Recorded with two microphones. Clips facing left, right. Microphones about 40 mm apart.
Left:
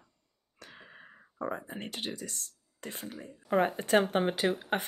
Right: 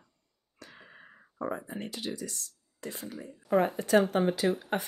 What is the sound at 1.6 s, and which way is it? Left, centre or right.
Speech, left.